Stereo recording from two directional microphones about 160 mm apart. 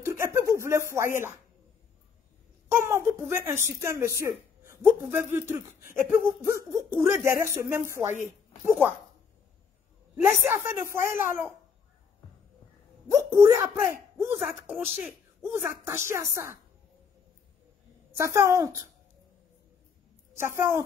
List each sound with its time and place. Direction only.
0.0 s a sound: 15° right (ahead or behind)
2.7 s speech: 15° right (ahead or behind)
10.1 s speech: 15° right (ahead or behind)
13.1 s speech: 20° right (ahead or behind)
14.5 s speech: 5° right (ahead or behind)
18.1 s speech: 15° right (ahead or behind)
20.3 s speech: 15° right (ahead or behind)